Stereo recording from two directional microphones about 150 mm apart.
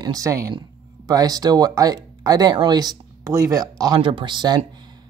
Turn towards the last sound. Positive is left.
turn(degrees=-30)  # may be behind; listen again after turning